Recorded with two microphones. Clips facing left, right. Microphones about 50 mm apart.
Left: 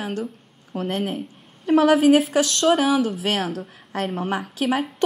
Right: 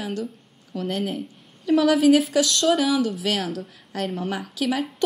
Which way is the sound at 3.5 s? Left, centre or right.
Left.